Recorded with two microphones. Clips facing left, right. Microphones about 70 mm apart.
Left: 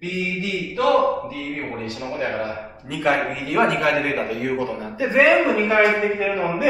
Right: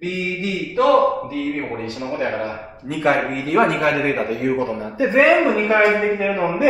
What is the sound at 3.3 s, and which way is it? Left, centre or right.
Speech, centre.